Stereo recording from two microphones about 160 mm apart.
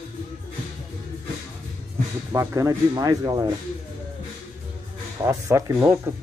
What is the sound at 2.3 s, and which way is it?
Speech, 20° right (ahead or behind).